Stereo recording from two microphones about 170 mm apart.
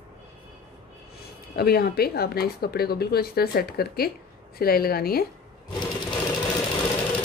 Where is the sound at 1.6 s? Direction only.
65° left (ahead or behind).